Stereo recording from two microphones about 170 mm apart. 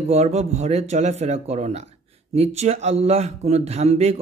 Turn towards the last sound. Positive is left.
turn(degrees=-40)  # may be behind; listen again after turning